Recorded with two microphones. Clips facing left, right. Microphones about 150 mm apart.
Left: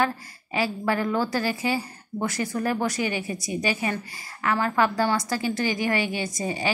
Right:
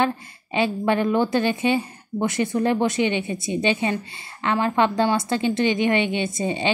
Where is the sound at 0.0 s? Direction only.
25° right (ahead or behind).